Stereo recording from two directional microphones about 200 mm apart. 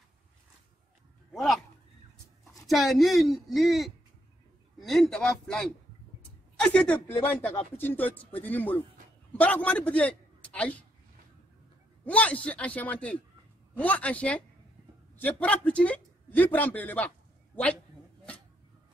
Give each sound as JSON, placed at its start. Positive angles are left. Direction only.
{"t": 1.3, "sound": "a sound", "side_deg": 0}
{"t": 2.7, "sound": "a woman's voice", "side_deg": 0}
{"t": 12.0, "sound": "a man's voice", "side_deg": 5}